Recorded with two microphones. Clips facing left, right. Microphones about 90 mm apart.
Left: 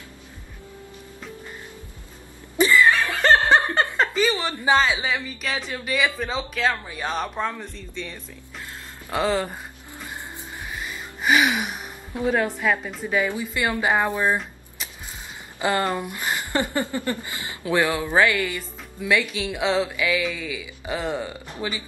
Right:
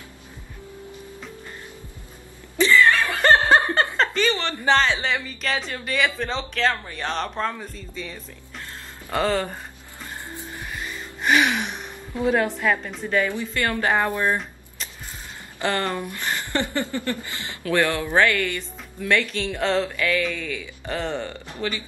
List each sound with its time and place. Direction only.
2.5 s chuckle: 15° left (ahead or behind)
3.9 s speech: 5° left (ahead or behind)
10.0 s vehicle: 15° left (ahead or behind)
10.8 s gasp: 5° left (ahead or behind)
12.2 s a woman's voice: centre (ahead or behind)